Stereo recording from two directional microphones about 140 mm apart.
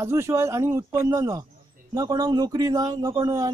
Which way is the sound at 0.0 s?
20° right (ahead or behind).